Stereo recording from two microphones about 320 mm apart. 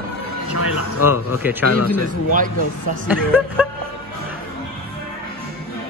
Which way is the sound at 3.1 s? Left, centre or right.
Centre.